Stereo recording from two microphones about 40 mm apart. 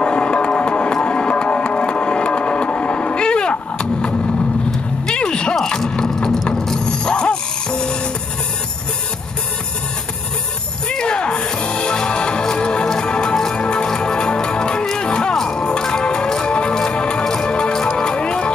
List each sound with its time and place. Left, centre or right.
0.0 s music: left
4.6 s a sound: centre
5.6 s mechanisms: centre
10.9 s music: left